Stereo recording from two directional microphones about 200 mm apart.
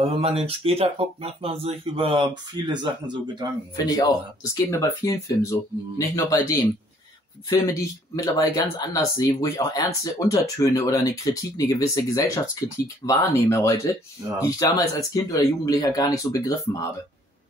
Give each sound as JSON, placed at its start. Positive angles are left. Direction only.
{"t": 0.0, "sound": "speech", "side_deg": -30}
{"t": 3.7, "sound": "speech", "side_deg": 20}